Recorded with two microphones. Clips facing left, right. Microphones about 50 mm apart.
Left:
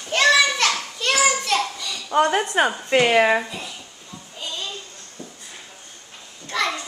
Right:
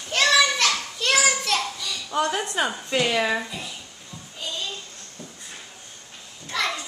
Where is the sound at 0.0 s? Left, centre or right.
Centre.